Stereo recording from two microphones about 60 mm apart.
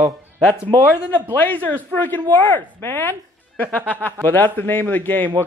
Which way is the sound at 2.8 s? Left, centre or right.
Left.